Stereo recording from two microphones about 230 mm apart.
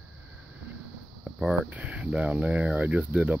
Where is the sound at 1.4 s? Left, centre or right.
Centre.